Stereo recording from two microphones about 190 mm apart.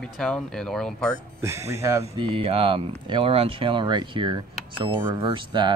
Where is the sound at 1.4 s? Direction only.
15° right (ahead or behind).